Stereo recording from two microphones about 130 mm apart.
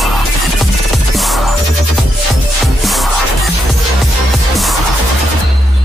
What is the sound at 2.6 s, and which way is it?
Music, centre (ahead or behind).